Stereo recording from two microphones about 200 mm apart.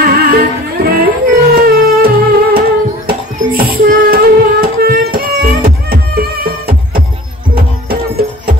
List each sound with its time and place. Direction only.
0.0 s music: 50° right (ahead or behind)